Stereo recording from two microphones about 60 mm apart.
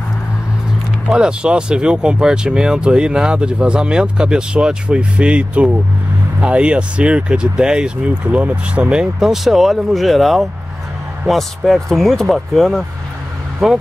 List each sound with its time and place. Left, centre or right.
1.0 s speech: centre